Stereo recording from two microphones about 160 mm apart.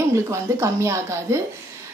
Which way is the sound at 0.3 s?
20° right (ahead or behind).